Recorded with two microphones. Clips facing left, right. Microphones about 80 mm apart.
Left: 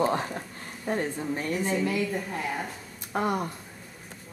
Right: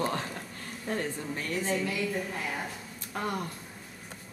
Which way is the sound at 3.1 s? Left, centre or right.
Left.